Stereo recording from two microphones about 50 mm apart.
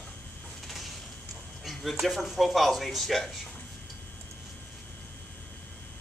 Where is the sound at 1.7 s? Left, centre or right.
Centre.